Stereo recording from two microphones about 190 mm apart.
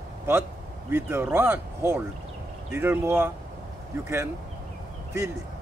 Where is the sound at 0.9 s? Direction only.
10° right (ahead or behind).